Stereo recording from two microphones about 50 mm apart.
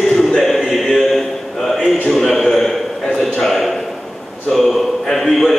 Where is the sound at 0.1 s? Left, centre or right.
Centre.